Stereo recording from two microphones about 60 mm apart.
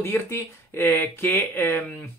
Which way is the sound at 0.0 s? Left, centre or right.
Left.